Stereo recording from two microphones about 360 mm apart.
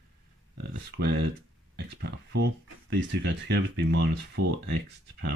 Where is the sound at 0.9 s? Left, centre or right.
Right.